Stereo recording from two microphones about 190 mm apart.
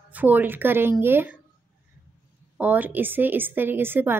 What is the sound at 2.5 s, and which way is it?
Speech, 10° right (ahead or behind).